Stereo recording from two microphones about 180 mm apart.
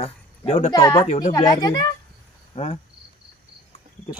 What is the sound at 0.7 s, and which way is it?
Speech, 20° left (ahead or behind).